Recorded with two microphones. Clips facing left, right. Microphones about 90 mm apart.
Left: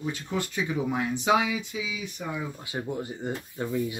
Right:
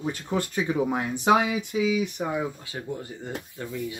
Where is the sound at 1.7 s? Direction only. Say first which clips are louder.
Right 10 dB; 55° right (ahead or behind).